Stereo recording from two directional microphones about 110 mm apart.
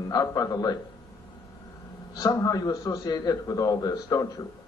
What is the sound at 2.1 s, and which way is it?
A man's voice, 35° left (ahead or behind).